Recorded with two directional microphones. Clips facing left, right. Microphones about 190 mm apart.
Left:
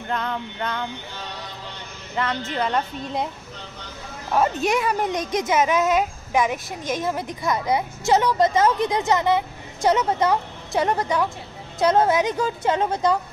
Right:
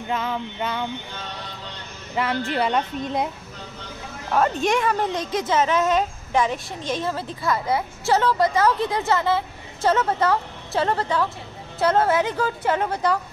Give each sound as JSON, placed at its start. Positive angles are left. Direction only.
{"t": 0.1, "sound": "a woman's voice", "side_deg": -5}
{"t": 2.2, "sound": "a woman's voice", "side_deg": -10}
{"t": 4.6, "sound": "a woman's voice", "side_deg": 10}